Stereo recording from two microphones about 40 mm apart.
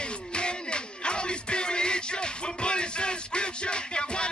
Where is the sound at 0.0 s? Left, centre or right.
Left.